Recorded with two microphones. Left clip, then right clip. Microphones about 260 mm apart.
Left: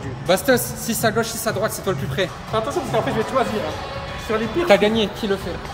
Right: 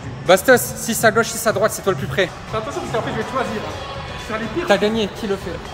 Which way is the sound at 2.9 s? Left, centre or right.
Left.